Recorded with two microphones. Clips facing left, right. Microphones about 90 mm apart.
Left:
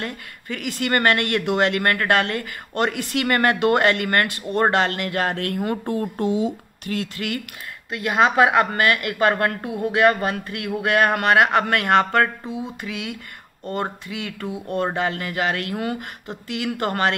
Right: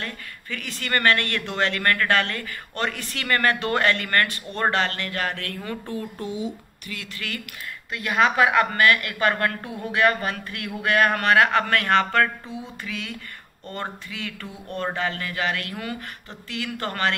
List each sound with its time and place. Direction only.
0.0 s a woman's voice: 15° left (ahead or behind)
5.6 s speech: 50° left (ahead or behind)
7.9 s a woman's voice: 15° left (ahead or behind)